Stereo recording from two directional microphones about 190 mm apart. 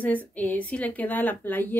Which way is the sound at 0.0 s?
10° left (ahead or behind).